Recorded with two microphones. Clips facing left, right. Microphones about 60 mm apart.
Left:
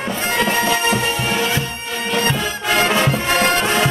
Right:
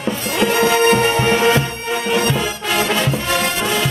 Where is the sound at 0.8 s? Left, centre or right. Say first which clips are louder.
Right 5 dB; right.